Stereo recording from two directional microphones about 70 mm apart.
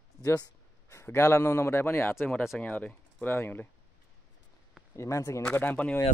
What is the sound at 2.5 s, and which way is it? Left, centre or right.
Speech, left.